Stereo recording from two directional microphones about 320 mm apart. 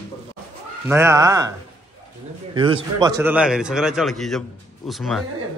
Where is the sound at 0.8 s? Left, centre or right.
Centre.